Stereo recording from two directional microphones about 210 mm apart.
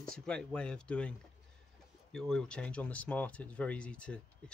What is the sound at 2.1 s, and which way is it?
Speech, 5° left (ahead or behind).